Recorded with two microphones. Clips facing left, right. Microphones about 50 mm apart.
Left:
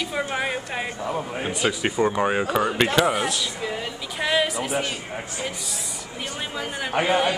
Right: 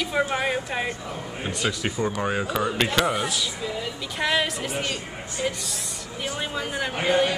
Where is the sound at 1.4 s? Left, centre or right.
Centre.